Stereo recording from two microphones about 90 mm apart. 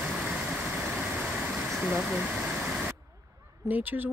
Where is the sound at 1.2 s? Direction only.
10° right (ahead or behind).